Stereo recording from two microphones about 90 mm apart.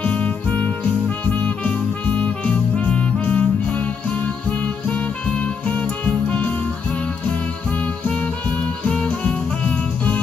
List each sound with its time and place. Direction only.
0.0 s music: 15° left (ahead or behind)
7.8 s music: 15° left (ahead or behind)